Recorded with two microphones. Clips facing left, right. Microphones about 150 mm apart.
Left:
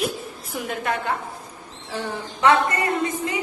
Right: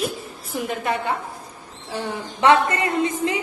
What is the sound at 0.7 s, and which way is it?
Speech, centre (ahead or behind).